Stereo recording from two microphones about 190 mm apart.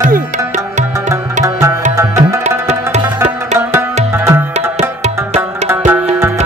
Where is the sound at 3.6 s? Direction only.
10° right (ahead or behind).